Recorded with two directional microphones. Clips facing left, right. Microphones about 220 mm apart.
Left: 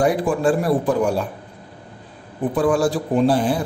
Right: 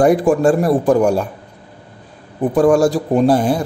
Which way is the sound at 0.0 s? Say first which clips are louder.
Right 6 dB; 45° right (ahead or behind).